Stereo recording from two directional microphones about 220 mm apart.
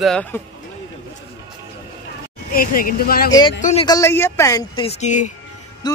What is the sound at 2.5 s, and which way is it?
Speech, 40° left (ahead or behind).